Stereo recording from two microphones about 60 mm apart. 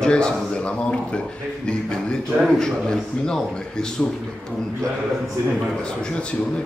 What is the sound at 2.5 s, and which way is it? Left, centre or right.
A man's voice, centre.